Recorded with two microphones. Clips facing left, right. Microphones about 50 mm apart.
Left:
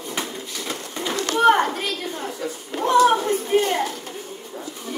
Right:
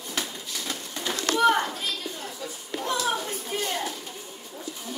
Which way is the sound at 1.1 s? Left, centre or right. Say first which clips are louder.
Left 5 dB; left.